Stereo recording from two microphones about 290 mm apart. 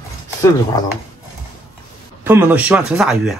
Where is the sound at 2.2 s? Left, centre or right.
Centre.